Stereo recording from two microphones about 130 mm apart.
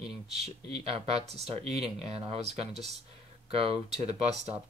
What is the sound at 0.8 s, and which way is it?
Speech, 50° right (ahead or behind).